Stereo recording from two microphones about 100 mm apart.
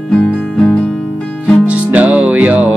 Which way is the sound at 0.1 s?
10° left (ahead or behind).